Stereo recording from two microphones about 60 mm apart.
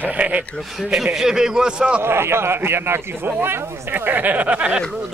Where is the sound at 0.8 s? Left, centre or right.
Centre.